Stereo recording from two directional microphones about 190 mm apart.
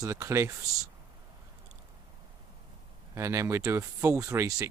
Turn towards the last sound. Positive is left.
turn(degrees=-15)  # may be behind; listen again after turning